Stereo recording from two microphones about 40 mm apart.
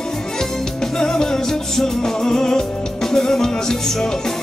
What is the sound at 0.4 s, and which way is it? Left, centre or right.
Music, centre.